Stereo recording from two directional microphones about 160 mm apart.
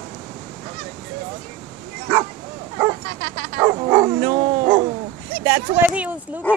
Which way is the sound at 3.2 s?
65° right (ahead or behind).